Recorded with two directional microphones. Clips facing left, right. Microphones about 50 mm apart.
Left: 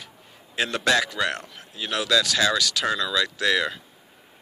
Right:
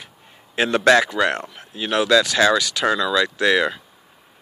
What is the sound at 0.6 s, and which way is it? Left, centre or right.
Speech, right.